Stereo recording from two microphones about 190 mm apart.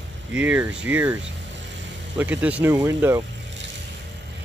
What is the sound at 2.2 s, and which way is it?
Speech, 5° right (ahead or behind).